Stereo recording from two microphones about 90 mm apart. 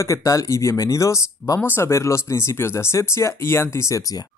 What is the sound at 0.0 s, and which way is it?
Speech, 35° left (ahead or behind).